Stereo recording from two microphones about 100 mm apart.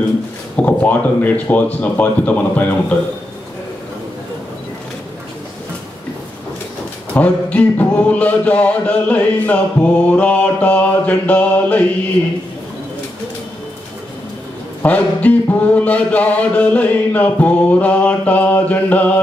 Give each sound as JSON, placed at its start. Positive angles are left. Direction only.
{"t": 0.6, "sound": "speech", "side_deg": 15}
{"t": 7.2, "sound": "speech", "side_deg": 15}
{"t": 14.8, "sound": "speech", "side_deg": 15}